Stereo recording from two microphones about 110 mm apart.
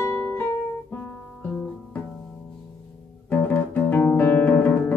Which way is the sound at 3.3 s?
15° left (ahead or behind).